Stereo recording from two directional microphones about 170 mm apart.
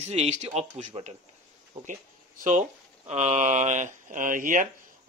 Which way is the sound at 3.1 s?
40° right (ahead or behind).